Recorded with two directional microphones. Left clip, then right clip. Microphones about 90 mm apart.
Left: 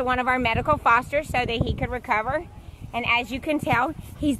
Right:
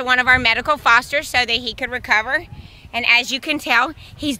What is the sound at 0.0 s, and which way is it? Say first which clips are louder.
Speech: right 8 dB; 35° right (ahead or behind).